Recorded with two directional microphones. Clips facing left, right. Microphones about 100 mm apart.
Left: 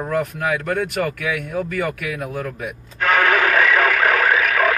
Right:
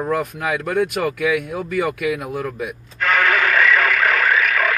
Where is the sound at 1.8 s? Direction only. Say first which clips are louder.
Right 3 dB; 15° right (ahead or behind).